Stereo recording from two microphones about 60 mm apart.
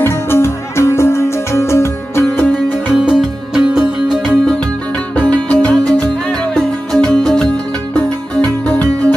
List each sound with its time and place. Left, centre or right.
0.0 s music: left
2.9 s music: centre
5.1 s music: left
7.9 s music: left